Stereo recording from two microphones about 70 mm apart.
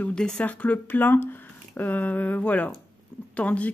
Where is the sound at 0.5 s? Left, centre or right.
Left.